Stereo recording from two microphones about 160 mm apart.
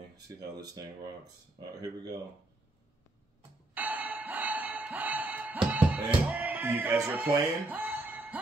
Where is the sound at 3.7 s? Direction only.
10° right (ahead or behind).